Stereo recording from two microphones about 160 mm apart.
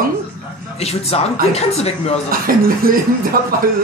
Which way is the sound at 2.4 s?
65° right (ahead or behind).